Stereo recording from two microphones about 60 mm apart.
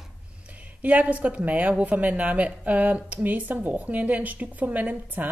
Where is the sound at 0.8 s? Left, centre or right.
Right.